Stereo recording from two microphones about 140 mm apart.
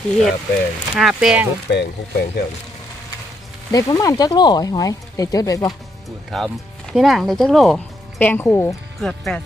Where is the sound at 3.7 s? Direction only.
25° left (ahead or behind).